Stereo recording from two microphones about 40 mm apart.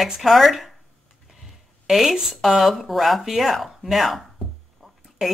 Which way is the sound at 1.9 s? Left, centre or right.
Centre.